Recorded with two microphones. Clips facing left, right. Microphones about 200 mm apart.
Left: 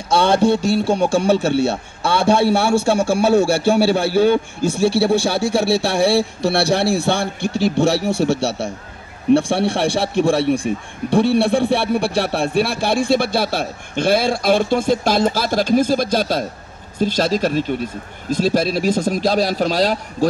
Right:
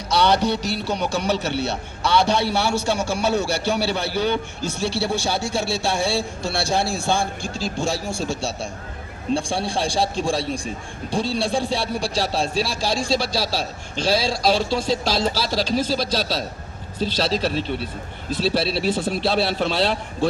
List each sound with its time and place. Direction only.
0.1 s a sound: 50° left (ahead or behind)
0.6 s music: 30° left (ahead or behind)
1.6 s a man's voice: 50° left (ahead or behind)